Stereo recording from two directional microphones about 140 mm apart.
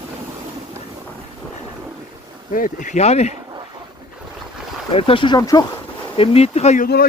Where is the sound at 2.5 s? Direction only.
70° left (ahead or behind); by 3.3 s 50° left (ahead or behind).